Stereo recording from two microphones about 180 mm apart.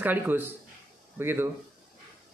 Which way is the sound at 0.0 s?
10° right (ahead or behind).